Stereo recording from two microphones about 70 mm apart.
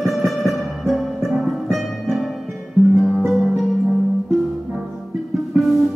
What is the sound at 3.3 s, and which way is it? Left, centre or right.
Music, centre.